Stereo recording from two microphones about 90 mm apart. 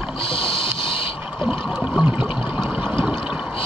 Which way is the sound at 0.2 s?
80° left.